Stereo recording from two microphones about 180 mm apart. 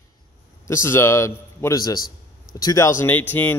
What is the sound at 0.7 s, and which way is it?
A man's voice, 15° left (ahead or behind).